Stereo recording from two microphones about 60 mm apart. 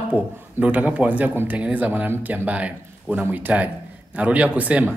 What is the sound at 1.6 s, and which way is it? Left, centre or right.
A man's voice, right.